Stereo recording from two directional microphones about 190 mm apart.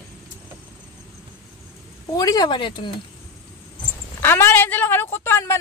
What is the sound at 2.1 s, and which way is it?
Speech, 20° left (ahead or behind).